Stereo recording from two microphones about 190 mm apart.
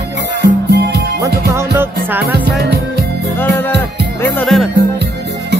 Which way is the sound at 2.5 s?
60° right (ahead or behind).